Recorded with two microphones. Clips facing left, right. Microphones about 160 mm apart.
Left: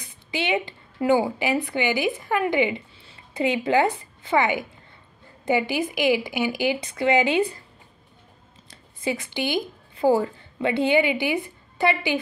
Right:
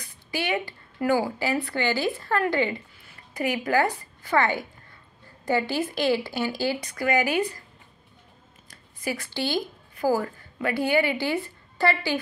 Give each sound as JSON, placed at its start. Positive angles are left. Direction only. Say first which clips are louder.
{"t": 0.0, "sound": "a woman's voice", "louder": "left 2 dB", "side_deg": 20}
{"t": 8.6, "sound": "speech", "louder": "left 4 dB", "side_deg": 20}